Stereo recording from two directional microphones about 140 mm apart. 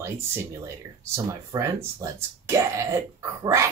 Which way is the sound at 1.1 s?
20° right (ahead or behind).